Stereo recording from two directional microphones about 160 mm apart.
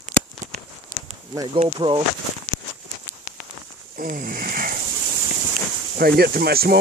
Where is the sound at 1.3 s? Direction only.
25° right (ahead or behind).